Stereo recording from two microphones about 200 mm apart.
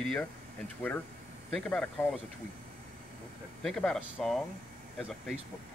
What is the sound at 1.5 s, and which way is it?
Speech, 5° left (ahead or behind).